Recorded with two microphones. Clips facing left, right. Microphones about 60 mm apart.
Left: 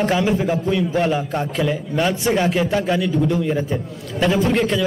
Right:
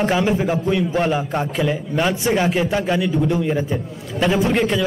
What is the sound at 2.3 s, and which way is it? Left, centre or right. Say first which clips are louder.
A man's voice: even; centre.